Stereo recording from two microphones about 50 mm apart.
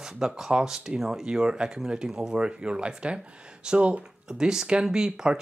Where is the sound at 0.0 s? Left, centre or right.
Centre.